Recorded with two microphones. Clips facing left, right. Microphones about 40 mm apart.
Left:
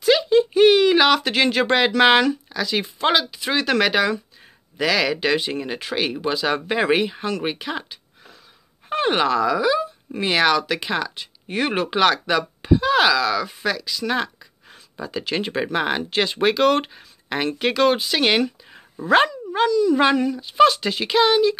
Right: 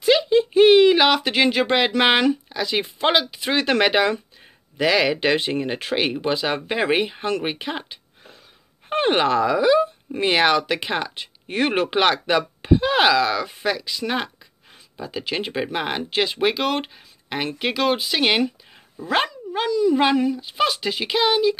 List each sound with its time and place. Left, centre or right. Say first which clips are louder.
0.0 s a sound: left 1 dB; centre
2.0 s speech: left 4 dB; centre
7.4 s a sound: left 1 dB; centre
8.9 s speech: right 1 dB; right
14.7 s speech: left 2 dB; centre
19.7 s speech: right 1 dB; centre